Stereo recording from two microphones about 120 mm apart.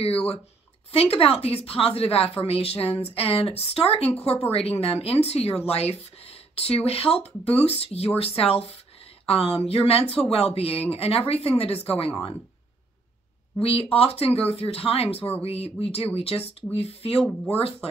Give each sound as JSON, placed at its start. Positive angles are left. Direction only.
{"t": 0.9, "sound": "a woman's voice", "side_deg": 55}
{"t": 13.6, "sound": "a woman's voice", "side_deg": 55}